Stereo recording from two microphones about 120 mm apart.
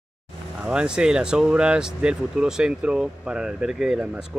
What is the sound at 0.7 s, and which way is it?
Speech, 5° right (ahead or behind).